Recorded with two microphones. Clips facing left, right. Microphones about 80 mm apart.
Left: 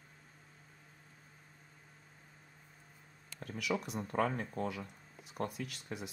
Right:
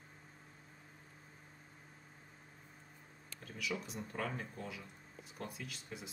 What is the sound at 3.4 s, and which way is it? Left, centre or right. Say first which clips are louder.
Speech: left 5 dB; left.